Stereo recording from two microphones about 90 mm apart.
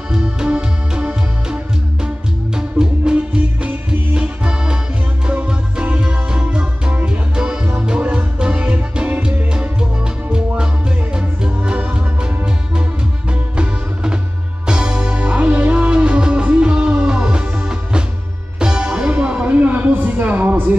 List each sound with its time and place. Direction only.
0.1 s music: 10° right (ahead or behind)
13.3 s music: 10° right (ahead or behind)